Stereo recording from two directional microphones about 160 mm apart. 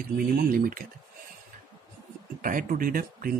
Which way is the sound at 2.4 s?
60° right (ahead or behind).